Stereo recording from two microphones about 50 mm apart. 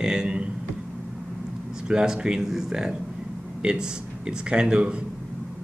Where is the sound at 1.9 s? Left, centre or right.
Centre.